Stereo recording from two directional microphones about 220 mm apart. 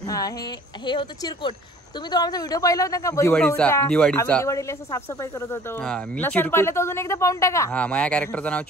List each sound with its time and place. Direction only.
0.0 s speech: 15° left (ahead or behind)